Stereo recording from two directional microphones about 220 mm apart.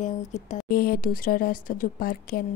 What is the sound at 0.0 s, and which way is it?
A woman's voice, 35° left (ahead or behind).